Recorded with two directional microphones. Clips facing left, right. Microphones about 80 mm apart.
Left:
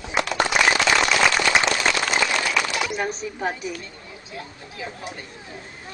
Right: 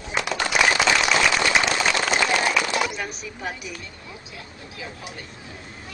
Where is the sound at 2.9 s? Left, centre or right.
Left.